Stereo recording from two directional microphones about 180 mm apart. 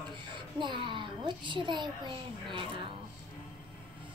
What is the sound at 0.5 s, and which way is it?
A woman's voice, 25° right (ahead or behind).